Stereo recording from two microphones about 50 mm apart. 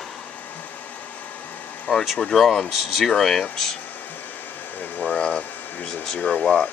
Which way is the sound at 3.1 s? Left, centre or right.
Centre.